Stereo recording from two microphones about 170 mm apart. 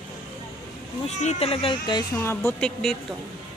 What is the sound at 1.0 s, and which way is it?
Speech, 40° left (ahead or behind).